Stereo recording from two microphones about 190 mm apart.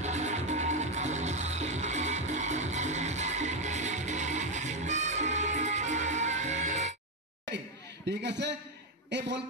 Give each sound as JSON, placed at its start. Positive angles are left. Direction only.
{"t": 0.0, "sound": "music", "side_deg": -35}
{"t": 8.2, "sound": "a man's voice", "side_deg": -65}